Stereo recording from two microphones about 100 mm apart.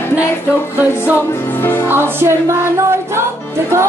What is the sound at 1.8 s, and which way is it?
Music, 25° right (ahead or behind).